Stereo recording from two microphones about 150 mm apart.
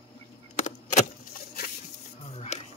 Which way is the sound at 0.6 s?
55° left (ahead or behind).